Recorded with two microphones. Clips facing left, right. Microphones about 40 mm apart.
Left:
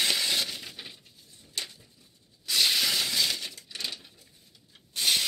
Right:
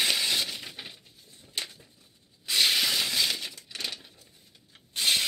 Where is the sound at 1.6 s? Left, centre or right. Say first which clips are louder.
Right 1 dB; right.